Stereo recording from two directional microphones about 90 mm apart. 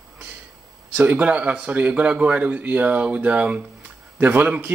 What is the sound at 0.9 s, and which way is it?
A man's voice, 20° right (ahead or behind).